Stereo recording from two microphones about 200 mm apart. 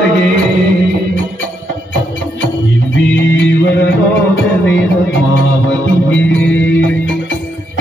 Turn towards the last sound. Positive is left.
turn(degrees=5)  # may be behind; listen again after turning